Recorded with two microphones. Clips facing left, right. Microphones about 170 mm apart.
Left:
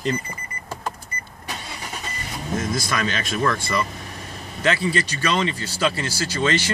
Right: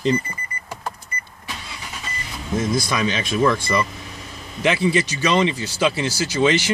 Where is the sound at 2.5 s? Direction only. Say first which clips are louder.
Right 4 dB; 15° right (ahead or behind).